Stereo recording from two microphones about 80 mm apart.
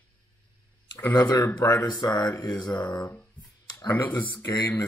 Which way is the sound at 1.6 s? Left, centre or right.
Left.